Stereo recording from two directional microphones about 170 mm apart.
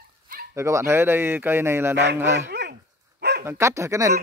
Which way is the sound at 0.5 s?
15° right (ahead or behind).